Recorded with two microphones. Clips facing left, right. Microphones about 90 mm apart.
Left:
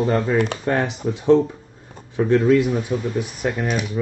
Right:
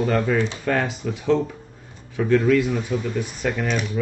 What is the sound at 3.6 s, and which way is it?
Speech, 10° left (ahead or behind).